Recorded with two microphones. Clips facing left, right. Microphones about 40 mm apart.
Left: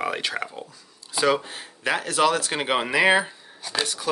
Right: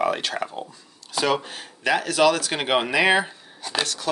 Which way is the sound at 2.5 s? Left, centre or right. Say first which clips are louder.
Right 1 dB; centre.